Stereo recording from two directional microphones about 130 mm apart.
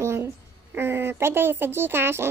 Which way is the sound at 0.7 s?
15° right (ahead or behind).